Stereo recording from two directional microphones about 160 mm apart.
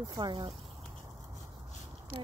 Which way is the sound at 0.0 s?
25° right (ahead or behind).